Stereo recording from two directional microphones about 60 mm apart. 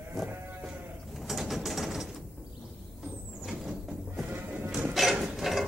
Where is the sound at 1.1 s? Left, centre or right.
Centre.